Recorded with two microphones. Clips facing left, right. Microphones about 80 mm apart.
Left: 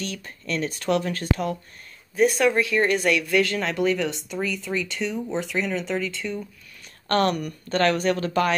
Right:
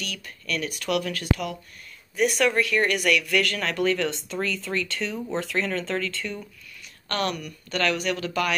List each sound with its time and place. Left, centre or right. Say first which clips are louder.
0.0 s speech: left 3 dB; left
7.1 s speech: left 6 dB; left